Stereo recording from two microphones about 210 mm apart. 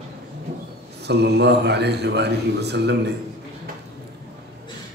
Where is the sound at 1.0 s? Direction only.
50° right (ahead or behind).